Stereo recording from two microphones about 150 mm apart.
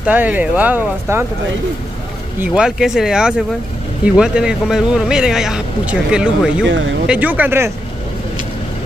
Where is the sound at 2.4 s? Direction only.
5° right (ahead or behind).